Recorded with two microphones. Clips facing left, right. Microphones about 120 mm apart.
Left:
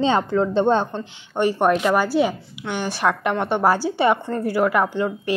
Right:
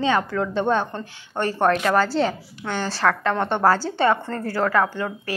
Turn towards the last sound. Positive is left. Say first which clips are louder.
# left 4 dB
turn(degrees=20)  # may be behind; listen again after turning